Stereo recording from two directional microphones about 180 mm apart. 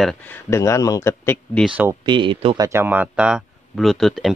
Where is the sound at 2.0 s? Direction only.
25° right (ahead or behind).